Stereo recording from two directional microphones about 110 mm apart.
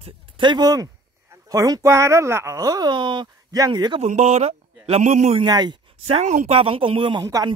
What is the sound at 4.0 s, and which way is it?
A man's voice, 85° right.